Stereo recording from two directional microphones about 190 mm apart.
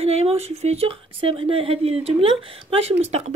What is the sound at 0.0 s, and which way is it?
A woman's voice, 35° right (ahead or behind).